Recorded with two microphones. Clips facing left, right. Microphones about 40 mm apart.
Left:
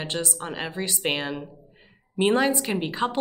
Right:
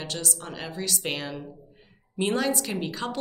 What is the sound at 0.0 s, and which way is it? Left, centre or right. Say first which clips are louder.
A woman's voice: left 4 dB; left.